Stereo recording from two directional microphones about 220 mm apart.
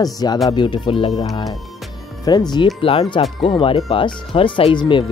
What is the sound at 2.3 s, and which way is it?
Speech, 20° left (ahead or behind).